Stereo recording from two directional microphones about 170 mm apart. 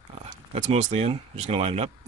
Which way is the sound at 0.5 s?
40° right (ahead or behind).